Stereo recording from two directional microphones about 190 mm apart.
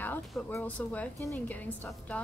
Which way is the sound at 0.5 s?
10° left (ahead or behind).